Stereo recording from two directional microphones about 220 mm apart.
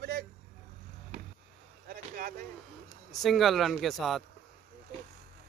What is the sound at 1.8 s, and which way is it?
Vehicle, 40° right (ahead or behind).